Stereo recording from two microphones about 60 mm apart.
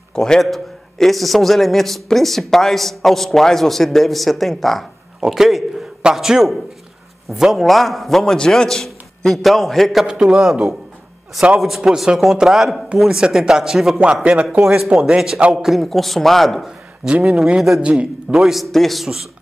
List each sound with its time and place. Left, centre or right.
0.1 s a man's voice: centre
10.0 s a man's voice: centre
14.2 s a man's voice: centre
16.6 s a man's voice: centre